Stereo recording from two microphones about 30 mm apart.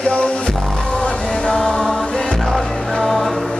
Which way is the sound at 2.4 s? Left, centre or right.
Centre.